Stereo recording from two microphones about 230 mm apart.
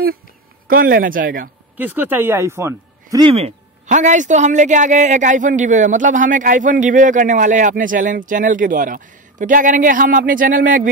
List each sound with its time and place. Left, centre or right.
0.7 s speech: right
1.8 s speech: centre; by 10.9 s right